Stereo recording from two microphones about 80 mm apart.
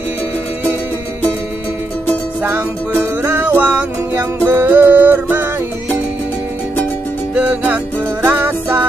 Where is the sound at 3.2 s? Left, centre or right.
Right.